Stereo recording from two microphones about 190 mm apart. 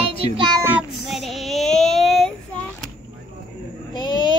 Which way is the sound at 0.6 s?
5° right (ahead or behind).